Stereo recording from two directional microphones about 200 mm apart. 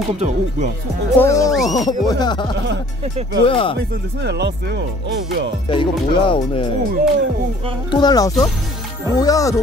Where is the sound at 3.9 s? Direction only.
60° right (ahead or behind).